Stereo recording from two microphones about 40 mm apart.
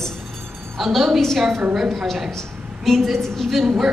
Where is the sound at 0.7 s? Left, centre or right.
Centre.